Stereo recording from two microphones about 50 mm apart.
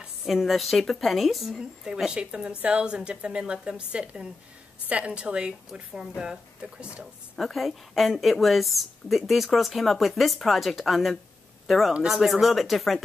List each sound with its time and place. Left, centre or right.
0.3 s a woman's voice: centre
2.0 s a woman's voice: centre
7.3 s a woman's voice: centre